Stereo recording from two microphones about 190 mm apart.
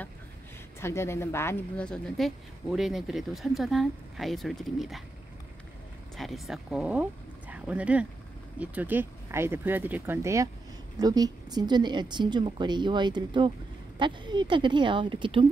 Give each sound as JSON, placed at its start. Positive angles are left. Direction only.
{"t": 0.7, "sound": "speech", "side_deg": 15}
{"t": 6.1, "sound": "a woman's voice", "side_deg": 0}